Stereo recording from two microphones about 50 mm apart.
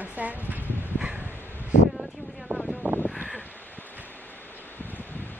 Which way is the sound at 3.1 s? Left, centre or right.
Centre.